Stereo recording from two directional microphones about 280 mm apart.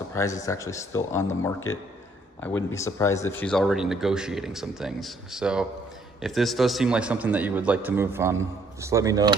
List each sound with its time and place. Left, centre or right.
0.1 s speech: centre